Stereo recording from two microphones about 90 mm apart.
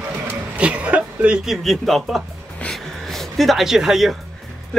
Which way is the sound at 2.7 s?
Centre (ahead or behind).